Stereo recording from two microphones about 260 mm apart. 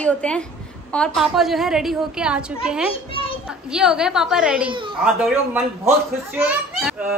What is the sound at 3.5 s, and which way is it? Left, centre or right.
A woman's voice, centre.